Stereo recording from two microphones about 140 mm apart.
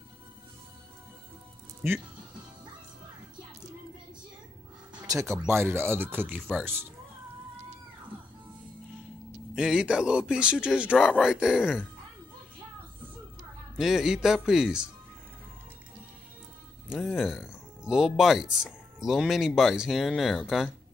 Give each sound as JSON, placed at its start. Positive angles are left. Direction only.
{"t": 4.9, "sound": "a sound", "side_deg": -25}
{"t": 5.5, "sound": "speech", "side_deg": -15}
{"t": 9.6, "sound": "speech", "side_deg": -5}
{"t": 13.7, "sound": "speech", "side_deg": -5}
{"t": 16.9, "sound": "speech", "side_deg": 0}